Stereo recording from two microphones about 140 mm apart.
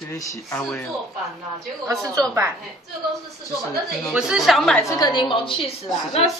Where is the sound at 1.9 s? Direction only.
25° right (ahead or behind).